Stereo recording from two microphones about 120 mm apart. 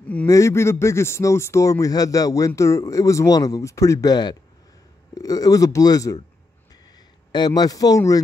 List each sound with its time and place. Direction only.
0.0 s a sound: 10° left (ahead or behind)
0.3 s speech: 25° left (ahead or behind)
7.3 s speech: 35° left (ahead or behind)